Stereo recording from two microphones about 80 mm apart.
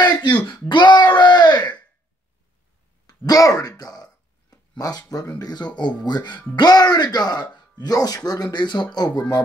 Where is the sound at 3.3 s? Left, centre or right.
Left.